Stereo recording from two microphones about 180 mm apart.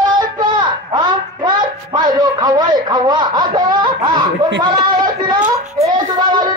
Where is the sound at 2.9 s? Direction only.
25° right (ahead or behind).